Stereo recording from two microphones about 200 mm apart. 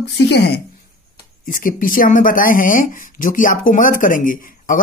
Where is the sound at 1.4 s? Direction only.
45° left (ahead or behind).